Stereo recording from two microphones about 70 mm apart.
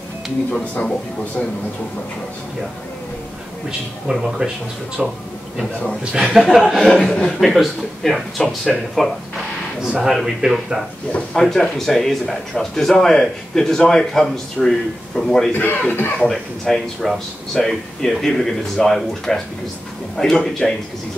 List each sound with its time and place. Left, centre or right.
4.1 s speech: centre
6.1 s a man's voice: centre
9.8 s speech: centre
15.5 s speech: left
16.3 s a man's voice: centre